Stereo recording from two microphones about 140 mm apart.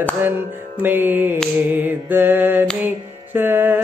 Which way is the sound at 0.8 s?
15° right (ahead or behind).